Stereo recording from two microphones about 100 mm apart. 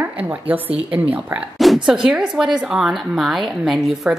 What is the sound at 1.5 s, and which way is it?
A woman's voice, centre (ahead or behind).